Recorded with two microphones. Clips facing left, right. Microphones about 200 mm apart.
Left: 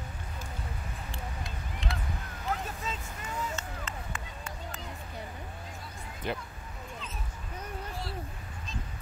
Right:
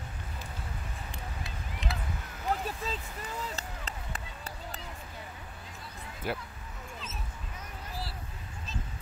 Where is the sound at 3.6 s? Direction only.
35° right (ahead or behind).